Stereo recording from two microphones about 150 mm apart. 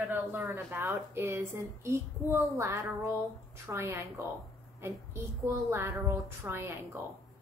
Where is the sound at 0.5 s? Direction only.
15° right (ahead or behind).